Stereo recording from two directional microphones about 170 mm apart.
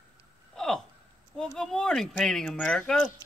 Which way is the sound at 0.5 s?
5° left (ahead or behind).